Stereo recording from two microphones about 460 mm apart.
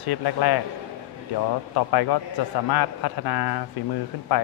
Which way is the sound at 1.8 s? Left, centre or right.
Left.